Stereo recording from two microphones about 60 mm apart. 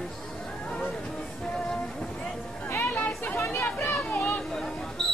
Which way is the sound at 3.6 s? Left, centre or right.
Left.